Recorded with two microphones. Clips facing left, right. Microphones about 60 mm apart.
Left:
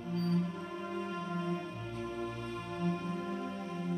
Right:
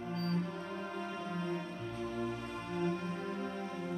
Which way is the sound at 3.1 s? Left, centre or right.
Centre.